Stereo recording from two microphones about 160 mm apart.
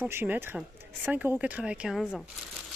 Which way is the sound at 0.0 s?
10° right (ahead or behind).